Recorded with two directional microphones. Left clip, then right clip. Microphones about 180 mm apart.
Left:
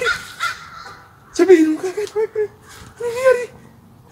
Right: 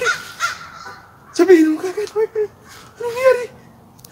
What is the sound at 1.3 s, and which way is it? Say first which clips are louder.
Speech: even; 5° left (ahead or behind).